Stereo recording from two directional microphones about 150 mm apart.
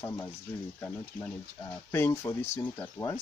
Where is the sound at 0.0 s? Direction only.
20° left (ahead or behind).